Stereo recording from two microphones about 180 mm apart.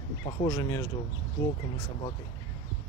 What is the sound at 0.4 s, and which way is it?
Speech, 20° left (ahead or behind).